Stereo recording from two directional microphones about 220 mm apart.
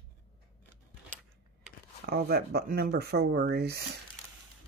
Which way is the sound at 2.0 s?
45° right (ahead or behind).